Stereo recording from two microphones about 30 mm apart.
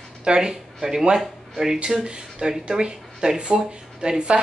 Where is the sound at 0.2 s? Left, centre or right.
Right.